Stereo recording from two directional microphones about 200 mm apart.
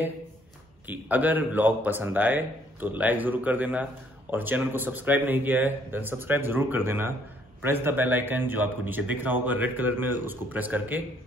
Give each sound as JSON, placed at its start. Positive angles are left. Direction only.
{"t": 0.8, "sound": "a man's voice", "side_deg": -10}